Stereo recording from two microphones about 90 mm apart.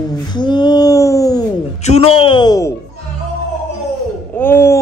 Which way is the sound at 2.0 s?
85° left.